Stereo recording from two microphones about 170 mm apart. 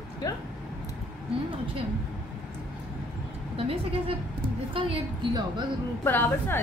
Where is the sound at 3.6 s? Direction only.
35° right (ahead or behind).